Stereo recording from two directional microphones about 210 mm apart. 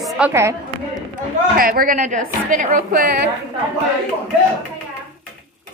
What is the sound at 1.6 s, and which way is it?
A woman's voice, 45° right (ahead or behind).